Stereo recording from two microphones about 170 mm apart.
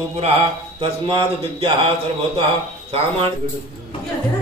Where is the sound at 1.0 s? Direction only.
30° right (ahead or behind).